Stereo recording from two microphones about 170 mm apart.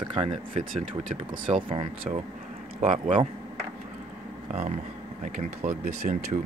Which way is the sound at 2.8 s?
40° right (ahead or behind).